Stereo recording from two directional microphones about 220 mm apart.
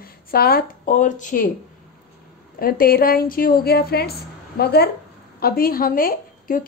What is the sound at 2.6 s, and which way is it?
A woman's voice, 40° left (ahead or behind).